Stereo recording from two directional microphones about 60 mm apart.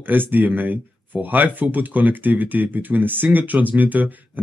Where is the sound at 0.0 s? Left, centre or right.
Right.